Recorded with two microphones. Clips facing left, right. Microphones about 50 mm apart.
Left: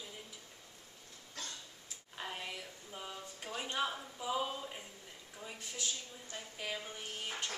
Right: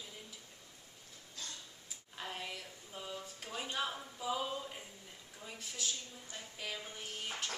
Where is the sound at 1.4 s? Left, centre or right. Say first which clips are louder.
Left 2 dB; left.